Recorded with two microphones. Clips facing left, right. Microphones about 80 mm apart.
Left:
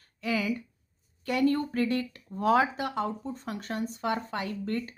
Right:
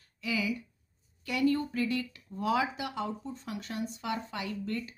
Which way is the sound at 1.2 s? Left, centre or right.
Left.